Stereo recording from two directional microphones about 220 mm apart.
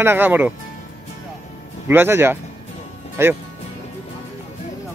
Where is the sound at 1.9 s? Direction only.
10° right (ahead or behind).